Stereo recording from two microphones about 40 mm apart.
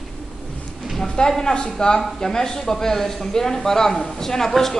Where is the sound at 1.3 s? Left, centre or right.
Centre.